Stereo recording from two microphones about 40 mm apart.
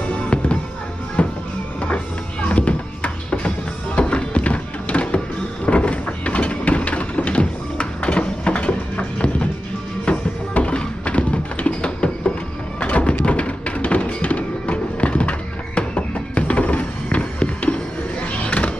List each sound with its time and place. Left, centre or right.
1.2 s music: left
2.4 s music: left
5.7 s a sound: left
10.0 s music: left
11.1 s tap: left
12.8 s music: left